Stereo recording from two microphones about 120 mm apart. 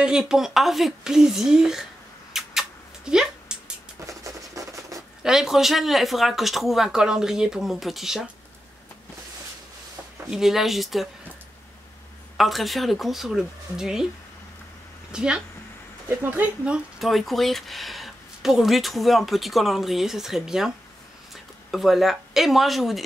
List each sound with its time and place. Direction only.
0.0 s speech: 5° right (ahead or behind)
2.3 s a sound: 5° right (ahead or behind)
4.2 s scratch: 30° right (ahead or behind)
5.2 s speech: 5° right (ahead or behind)
10.3 s speech: 5° right (ahead or behind)
12.4 s speech: centre (ahead or behind)
15.0 s speech: 5° right (ahead or behind)